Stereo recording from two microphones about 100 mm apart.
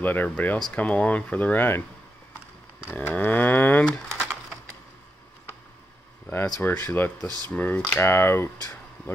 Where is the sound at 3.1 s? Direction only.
15° left (ahead or behind).